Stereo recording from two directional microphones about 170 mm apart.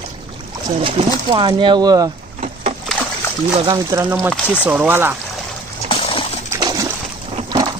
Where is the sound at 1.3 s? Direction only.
30° right (ahead or behind).